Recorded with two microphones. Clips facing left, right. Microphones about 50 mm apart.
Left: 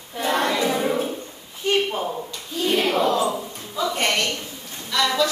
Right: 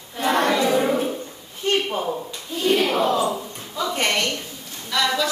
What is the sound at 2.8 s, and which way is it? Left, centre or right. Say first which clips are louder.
Battle cry: even; centre.